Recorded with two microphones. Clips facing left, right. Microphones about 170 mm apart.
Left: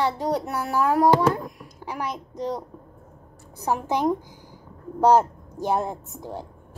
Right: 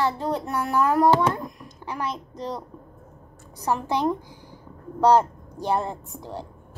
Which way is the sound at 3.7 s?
15° left (ahead or behind).